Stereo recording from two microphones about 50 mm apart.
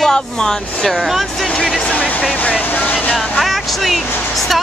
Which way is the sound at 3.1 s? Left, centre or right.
Centre.